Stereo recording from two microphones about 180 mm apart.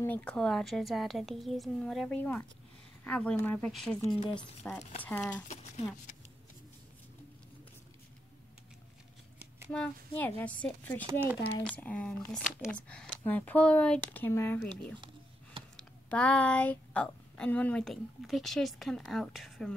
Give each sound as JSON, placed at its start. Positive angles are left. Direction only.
{"t": 0.0, "sound": "a woman's voice", "side_deg": 10}
{"t": 4.1, "sound": "speech", "side_deg": 25}
{"t": 5.0, "sound": "speech", "side_deg": 10}
{"t": 5.5, "sound": "speech", "side_deg": 40}
{"t": 9.7, "sound": "a woman's voice", "side_deg": 10}